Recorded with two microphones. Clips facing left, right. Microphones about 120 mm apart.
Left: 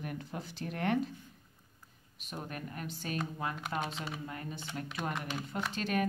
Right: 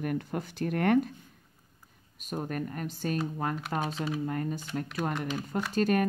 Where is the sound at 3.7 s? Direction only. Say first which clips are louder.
Right 4 dB; 55° right (ahead or behind).